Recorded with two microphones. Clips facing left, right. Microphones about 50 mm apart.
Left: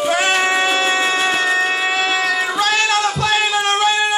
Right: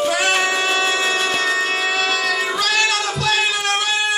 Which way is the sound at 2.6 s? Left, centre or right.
Left.